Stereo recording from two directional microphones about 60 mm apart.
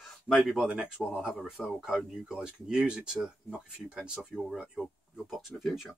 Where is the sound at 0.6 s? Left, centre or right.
Centre.